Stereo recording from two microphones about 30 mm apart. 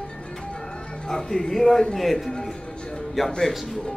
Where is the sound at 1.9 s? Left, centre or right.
Centre.